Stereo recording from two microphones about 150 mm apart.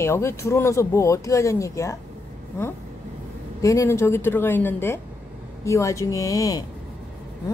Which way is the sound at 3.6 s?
20° left (ahead or behind).